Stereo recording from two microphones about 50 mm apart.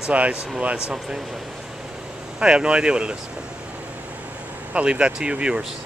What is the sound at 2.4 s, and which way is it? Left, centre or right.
Speech, centre.